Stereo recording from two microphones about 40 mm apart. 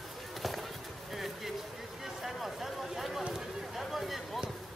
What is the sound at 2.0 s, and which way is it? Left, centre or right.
Run, centre.